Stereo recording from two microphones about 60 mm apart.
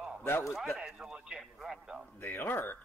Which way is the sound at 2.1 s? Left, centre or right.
Left.